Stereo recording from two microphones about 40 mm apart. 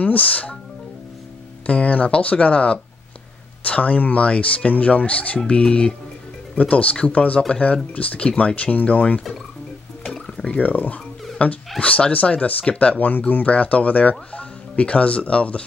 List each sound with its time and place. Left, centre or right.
0.0 s speech: left
1.7 s speech: left
5.5 s speech: left
6.5 s speech: left
10.0 s liquid: centre
10.4 s speech: left